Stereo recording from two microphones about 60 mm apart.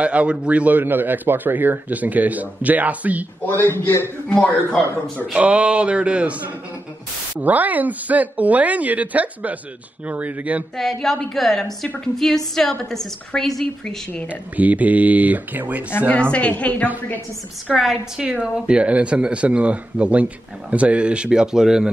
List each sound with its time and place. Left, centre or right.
0.0 s a man's voice: right
3.5 s a man's voice: left
5.3 s a man's voice: right
10.8 s a woman's voice: centre
14.6 s a man's voice: right
16.1 s a woman's voice: centre
17.7 s a woman's voice: centre
18.2 s a man's voice: centre